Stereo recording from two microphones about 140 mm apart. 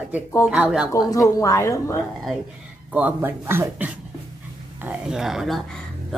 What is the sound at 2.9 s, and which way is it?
A woman's voice, 15° right (ahead or behind).